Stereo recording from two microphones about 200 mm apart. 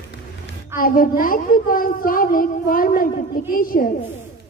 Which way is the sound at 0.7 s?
45° left (ahead or behind).